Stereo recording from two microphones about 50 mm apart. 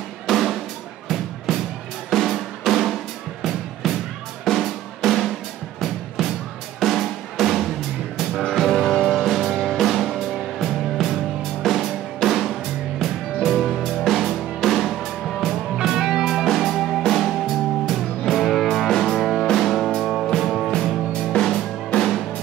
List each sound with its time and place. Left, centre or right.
0.3 s drum: centre
1.0 s music: centre
2.0 s drum: centre
3.8 s music: centre
4.5 s drum: centre
5.8 s music: centre
6.8 s drum: centre
8.5 s music: centre
11.6 s drum: centre
13.0 s music: centre